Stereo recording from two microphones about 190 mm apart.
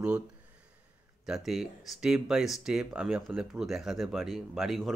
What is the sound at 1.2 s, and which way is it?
Speech, centre (ahead or behind).